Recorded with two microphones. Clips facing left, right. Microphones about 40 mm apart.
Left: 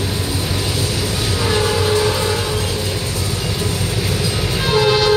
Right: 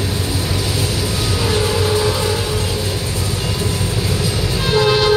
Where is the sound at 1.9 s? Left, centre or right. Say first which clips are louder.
Even; centre.